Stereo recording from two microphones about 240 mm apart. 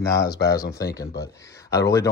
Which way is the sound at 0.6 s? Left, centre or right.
Left.